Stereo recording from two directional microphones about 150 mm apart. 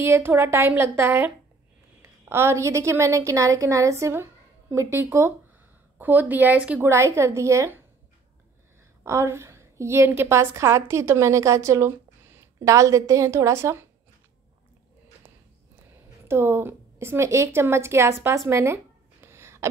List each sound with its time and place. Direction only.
0.0 s a woman's voice: 15° right (ahead or behind)
9.0 s a woman's voice: 20° right (ahead or behind)
16.3 s a woman's voice: 15° right (ahead or behind)
19.2 s a sound: 15° right (ahead or behind)